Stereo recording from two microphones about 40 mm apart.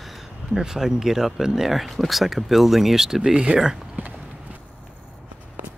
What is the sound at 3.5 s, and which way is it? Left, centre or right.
Speech, right.